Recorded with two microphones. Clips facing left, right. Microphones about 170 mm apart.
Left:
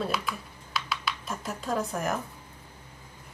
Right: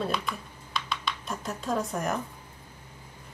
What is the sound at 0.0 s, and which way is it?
Computer keyboard, 5° left (ahead or behind).